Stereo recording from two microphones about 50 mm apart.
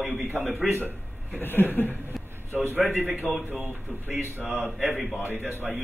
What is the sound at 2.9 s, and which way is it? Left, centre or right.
Speech, right.